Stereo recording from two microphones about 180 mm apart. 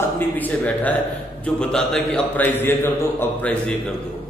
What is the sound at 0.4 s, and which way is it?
A man's voice, 10° left (ahead or behind).